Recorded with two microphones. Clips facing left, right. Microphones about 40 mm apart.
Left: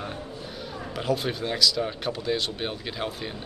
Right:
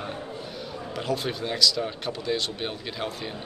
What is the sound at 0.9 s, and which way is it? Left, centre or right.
Speech, centre.